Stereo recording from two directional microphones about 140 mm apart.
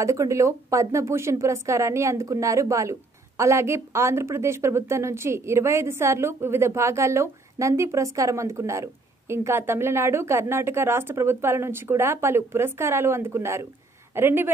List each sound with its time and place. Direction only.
0.0 s a woman's voice: 20° right (ahead or behind)